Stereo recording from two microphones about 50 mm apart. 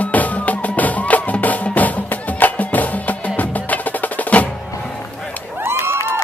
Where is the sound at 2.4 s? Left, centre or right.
Left.